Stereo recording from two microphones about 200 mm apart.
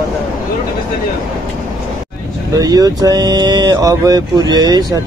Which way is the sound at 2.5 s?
20° right (ahead or behind).